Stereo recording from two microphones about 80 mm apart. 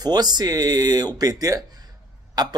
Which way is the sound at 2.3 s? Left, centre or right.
Right.